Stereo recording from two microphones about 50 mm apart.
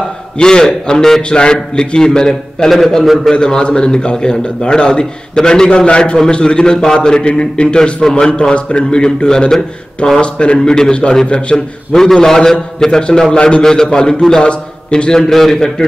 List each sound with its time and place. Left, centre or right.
0.4 s a man's voice: centre
11.5 s a man's voice: centre